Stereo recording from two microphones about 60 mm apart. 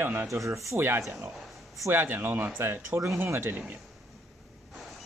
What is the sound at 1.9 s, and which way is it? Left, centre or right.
Speech, right.